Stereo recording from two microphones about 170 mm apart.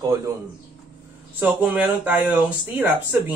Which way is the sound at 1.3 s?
10° right (ahead or behind).